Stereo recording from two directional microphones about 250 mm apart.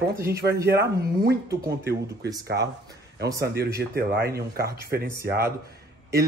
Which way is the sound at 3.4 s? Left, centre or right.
Right.